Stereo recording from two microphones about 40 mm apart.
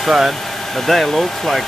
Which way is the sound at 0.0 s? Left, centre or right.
Centre.